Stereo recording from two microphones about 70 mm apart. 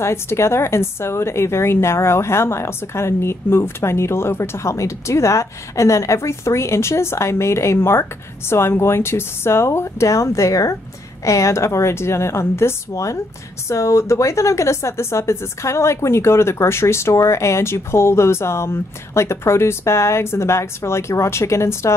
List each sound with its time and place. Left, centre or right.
0.0 s a woman's voice: left